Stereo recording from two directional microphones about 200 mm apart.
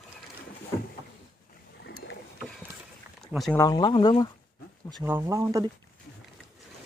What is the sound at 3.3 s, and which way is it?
Speech, centre (ahead or behind).